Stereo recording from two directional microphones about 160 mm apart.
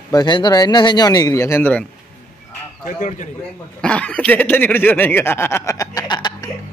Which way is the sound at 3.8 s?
10° left (ahead or behind).